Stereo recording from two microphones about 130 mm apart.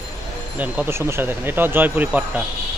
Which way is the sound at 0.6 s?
15° right (ahead or behind).